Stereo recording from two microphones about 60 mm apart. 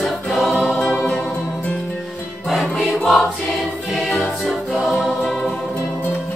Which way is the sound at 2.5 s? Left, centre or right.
Centre.